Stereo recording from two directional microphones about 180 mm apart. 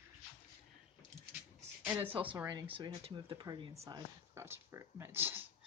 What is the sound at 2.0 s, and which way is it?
Speech, 30° right (ahead or behind).